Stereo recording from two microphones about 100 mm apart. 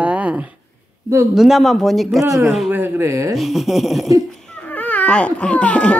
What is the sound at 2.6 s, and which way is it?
Speech, 20° right (ahead or behind).